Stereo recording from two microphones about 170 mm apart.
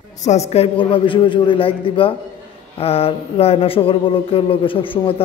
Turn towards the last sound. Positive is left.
turn(degrees=30)  # may be behind; listen again after turning